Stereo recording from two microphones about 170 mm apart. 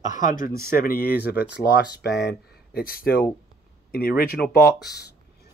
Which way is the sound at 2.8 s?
60° left (ahead or behind).